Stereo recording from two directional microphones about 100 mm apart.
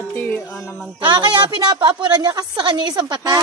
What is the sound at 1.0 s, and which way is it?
A woman's voice, 50° right (ahead or behind).